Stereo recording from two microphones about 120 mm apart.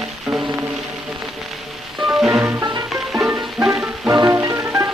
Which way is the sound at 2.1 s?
10° right (ahead or behind).